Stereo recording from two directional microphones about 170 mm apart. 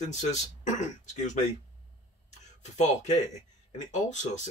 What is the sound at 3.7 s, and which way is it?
Speech, 45° left (ahead or behind).